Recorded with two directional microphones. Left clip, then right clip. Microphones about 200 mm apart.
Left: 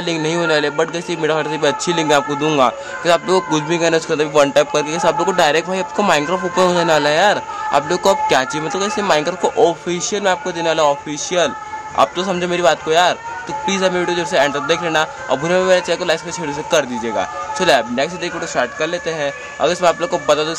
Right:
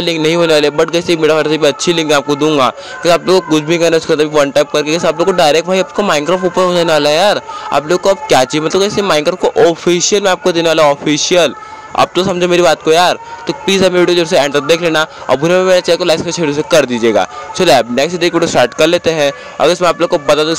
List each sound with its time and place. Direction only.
0.0 s a man's voice: 25° right (ahead or behind)
8.3 s a man's voice: 30° right (ahead or behind)